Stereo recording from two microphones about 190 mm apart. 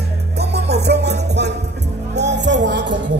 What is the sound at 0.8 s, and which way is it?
Music, 60° right (ahead or behind).